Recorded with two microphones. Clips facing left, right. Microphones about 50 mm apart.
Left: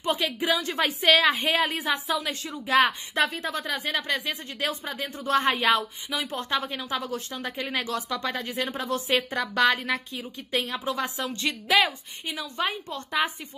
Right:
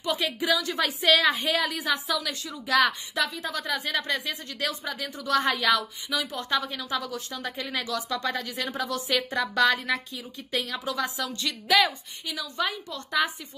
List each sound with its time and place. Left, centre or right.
0.5 s speech: left